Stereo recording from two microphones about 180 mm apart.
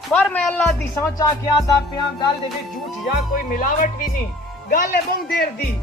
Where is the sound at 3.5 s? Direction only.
50° left (ahead or behind).